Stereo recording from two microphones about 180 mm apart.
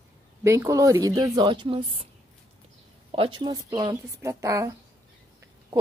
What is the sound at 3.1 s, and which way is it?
A woman's voice, 30° right (ahead or behind).